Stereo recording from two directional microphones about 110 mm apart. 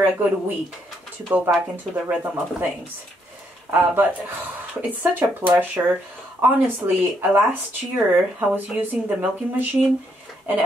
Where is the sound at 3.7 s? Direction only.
15° right (ahead or behind).